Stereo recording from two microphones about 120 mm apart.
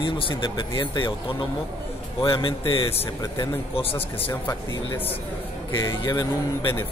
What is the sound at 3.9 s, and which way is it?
Speech, 20° left (ahead or behind).